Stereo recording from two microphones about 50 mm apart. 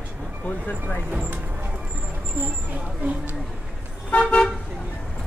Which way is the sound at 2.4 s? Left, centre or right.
Right.